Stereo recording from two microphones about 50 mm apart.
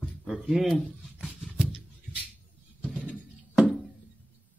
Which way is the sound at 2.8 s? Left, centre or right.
Right.